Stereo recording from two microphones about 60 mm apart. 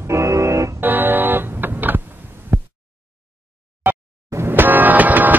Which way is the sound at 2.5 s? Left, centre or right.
Right.